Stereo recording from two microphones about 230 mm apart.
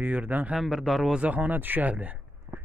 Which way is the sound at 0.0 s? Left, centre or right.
Centre.